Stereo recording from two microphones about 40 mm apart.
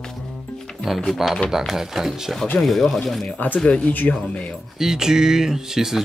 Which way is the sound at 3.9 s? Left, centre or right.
Left.